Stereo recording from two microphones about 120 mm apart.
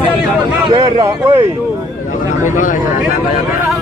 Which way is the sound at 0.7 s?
45° right (ahead or behind).